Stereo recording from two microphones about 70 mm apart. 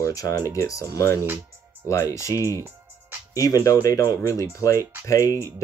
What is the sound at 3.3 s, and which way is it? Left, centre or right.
Speech, left.